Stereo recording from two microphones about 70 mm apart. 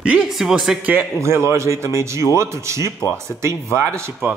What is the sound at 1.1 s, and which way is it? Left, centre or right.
Speech, right.